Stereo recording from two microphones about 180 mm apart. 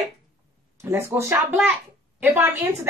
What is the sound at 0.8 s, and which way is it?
A woman's voice, 15° right (ahead or behind).